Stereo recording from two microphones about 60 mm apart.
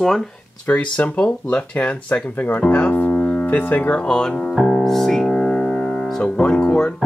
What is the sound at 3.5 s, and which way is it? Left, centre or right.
Speech, left.